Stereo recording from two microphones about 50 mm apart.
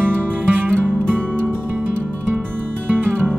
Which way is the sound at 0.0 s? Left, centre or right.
Right.